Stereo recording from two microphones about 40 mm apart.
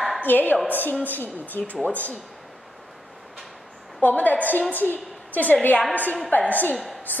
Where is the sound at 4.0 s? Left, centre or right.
Left.